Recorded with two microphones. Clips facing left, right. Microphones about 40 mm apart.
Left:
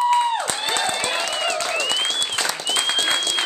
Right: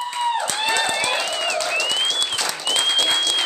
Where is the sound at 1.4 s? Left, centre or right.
Left.